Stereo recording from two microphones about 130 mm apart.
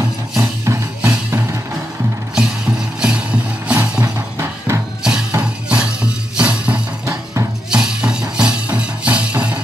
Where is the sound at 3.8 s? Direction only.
20° right (ahead or behind).